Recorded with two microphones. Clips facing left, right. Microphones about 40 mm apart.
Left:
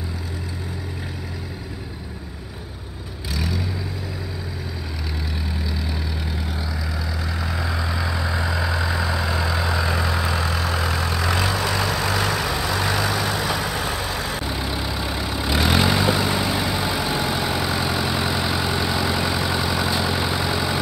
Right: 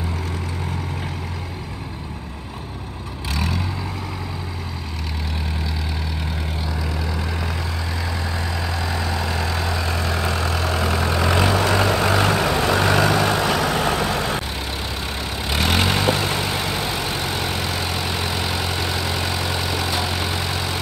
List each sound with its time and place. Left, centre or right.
8.0 s vehicle: centre; by 13.2 s right
13.7 s vehicle: right
15.4 s vehicle: centre